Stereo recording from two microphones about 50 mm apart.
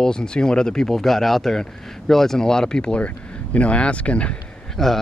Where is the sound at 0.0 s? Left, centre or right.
Centre.